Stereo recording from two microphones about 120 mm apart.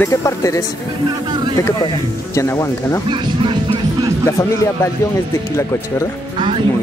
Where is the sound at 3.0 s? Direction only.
45° right (ahead or behind).